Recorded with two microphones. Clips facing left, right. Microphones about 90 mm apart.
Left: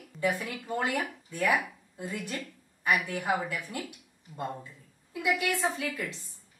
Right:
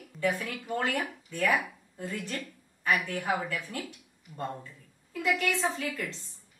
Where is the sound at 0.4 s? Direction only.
5° left (ahead or behind).